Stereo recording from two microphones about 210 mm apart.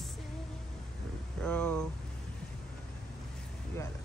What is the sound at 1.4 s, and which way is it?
Speech, 5° left (ahead or behind).